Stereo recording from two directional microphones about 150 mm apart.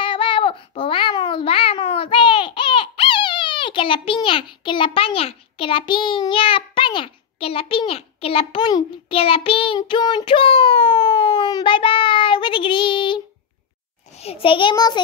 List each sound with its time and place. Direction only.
0.0 s babbling: 35° left (ahead or behind)
14.1 s a child's voice: 40° left (ahead or behind)